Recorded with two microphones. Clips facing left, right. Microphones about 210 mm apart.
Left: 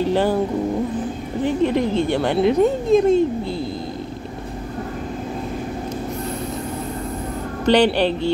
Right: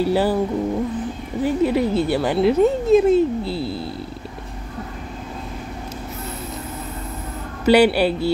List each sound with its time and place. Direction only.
0.0 s a woman's voice: 10° right (ahead or behind)
1.4 s speech: 10° right (ahead or behind)
3.4 s speech: 35° right (ahead or behind)
7.6 s a woman's voice: 10° right (ahead or behind)